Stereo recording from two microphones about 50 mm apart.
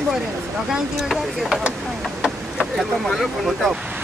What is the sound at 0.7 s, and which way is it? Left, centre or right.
Speech, centre.